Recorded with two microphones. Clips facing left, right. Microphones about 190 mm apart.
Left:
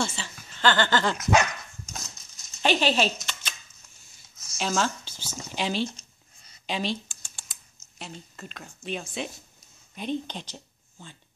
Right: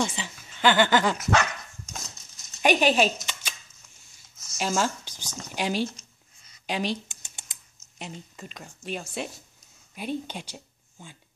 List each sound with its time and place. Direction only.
0.0 s speech: 15° right (ahead or behind)
1.3 s dog: 15° left (ahead or behind)
2.6 s a sound: 15° right (ahead or behind)
4.6 s speech: 10° right (ahead or behind)
6.6 s a sound: 15° right (ahead or behind)
9.9 s speech: 10° right (ahead or behind)